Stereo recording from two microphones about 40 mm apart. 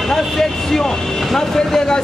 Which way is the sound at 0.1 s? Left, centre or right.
Centre.